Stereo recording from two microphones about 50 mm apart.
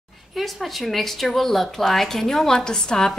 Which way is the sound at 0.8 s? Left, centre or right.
Centre.